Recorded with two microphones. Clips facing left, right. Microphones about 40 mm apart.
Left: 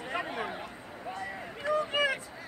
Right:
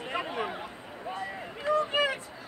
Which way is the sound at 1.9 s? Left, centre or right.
Centre.